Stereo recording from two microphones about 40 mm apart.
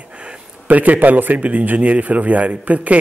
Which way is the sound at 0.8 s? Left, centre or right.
Right.